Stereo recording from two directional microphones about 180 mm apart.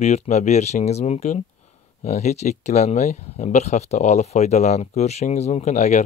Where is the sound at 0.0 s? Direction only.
40° left (ahead or behind).